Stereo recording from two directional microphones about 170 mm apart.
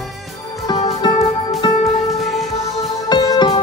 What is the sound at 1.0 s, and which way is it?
Music, 25° left (ahead or behind).